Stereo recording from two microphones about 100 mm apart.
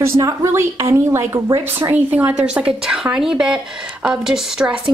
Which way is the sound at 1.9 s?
15° right (ahead or behind).